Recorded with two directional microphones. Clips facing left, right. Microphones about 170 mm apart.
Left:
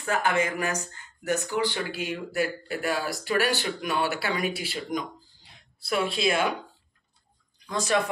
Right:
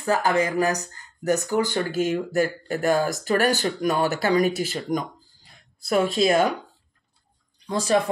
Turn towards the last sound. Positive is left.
turn(degrees=-30)  # may be behind; listen again after turning